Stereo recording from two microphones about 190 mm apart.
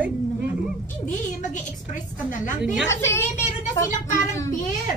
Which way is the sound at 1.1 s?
40° left (ahead or behind).